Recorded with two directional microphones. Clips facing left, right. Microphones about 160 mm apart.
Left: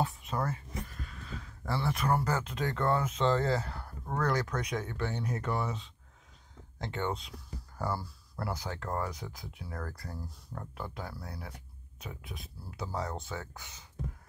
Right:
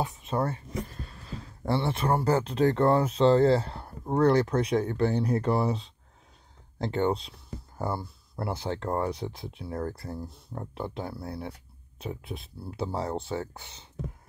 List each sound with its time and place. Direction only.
0.0 s speech: 25° right (ahead or behind)